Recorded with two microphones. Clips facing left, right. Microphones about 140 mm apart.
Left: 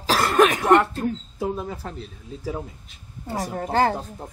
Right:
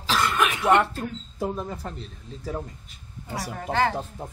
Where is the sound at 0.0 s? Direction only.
40° left (ahead or behind).